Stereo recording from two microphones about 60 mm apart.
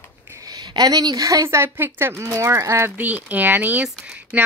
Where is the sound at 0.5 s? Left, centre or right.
Right.